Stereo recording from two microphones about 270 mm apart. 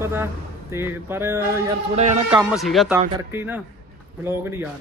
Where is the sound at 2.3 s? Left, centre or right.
Centre.